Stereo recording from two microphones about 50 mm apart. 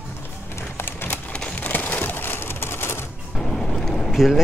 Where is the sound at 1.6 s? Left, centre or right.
Left.